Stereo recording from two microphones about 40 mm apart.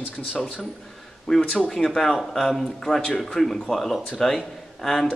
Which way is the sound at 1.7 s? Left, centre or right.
Centre.